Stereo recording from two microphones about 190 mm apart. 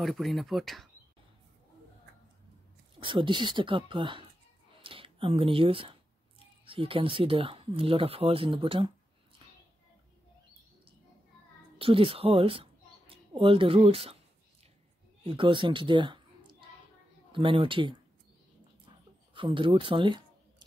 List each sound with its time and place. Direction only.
0.0 s speech: centre (ahead or behind)
3.0 s speech: 25° right (ahead or behind)
11.8 s speech: 30° right (ahead or behind)
15.2 s speech: 25° right (ahead or behind)
19.3 s speech: 25° right (ahead or behind)